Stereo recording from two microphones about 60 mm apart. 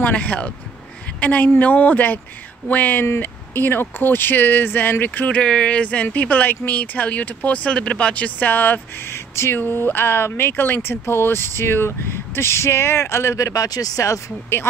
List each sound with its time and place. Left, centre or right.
0.0 s speech: left
5.4 s speech: centre; by 9.6 s left
9.6 s speech: left